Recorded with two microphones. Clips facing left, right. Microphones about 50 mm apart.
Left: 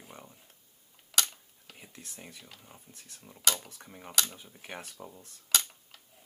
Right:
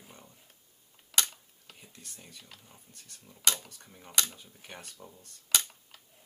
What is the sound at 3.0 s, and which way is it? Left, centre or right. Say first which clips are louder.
Speech: left 2 dB; centre.